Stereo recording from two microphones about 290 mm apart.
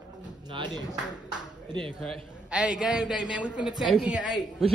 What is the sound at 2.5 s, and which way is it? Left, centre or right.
A man's voice, centre.